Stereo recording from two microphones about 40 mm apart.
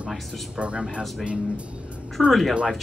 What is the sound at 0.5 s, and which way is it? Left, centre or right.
Speech, right.